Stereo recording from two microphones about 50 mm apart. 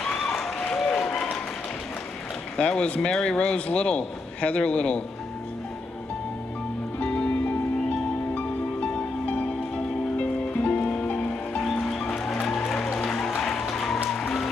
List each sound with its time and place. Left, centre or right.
0.0 s applause: centre
0.6 s applause: centre
2.5 s a man's voice: centre
7.0 s music: left
11.8 s music: centre